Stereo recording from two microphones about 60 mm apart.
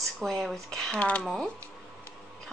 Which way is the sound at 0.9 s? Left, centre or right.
Left.